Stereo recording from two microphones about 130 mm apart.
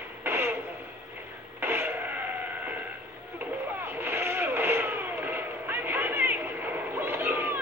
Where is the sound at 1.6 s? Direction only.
20° right (ahead or behind).